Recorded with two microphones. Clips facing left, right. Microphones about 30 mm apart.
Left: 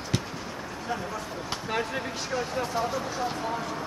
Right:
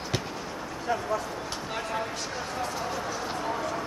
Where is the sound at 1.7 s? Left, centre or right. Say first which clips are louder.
Left 1 dB; centre.